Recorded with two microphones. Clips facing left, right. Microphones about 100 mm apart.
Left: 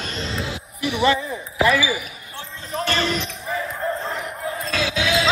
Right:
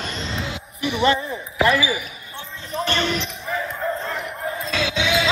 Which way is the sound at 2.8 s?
Centre (ahead or behind).